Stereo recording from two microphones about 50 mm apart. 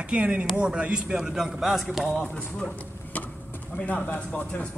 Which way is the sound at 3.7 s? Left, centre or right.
Left.